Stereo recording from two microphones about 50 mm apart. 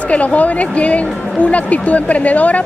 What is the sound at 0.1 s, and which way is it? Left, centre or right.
A woman's voice, left.